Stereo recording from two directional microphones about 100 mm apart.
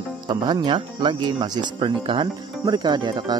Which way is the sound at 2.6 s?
45° right (ahead or behind).